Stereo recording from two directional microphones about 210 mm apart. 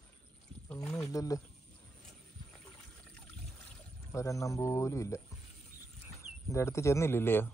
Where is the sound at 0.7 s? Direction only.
10° left (ahead or behind).